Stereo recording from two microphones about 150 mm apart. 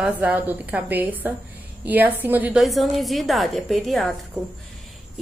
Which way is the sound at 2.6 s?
Centre (ahead or behind).